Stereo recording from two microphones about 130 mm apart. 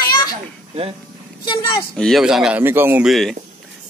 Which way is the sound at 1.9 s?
5° left (ahead or behind).